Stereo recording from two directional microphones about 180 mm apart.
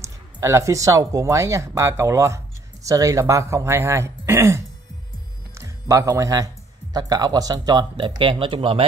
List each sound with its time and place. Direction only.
0.0 s speech: 15° right (ahead or behind)